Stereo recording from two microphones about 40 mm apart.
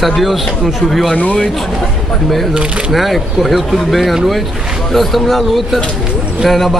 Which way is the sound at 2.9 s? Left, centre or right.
Centre.